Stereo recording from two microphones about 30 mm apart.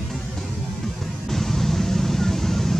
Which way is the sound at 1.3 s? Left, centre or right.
Centre.